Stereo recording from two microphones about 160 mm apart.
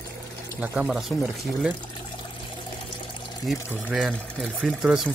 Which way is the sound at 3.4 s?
Centre (ahead or behind).